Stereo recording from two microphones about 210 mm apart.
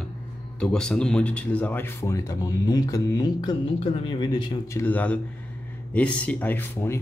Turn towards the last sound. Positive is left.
turn(degrees=10)  # may be behind; listen again after turning